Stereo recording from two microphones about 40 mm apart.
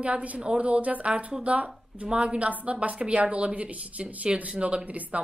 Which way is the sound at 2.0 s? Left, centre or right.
Right.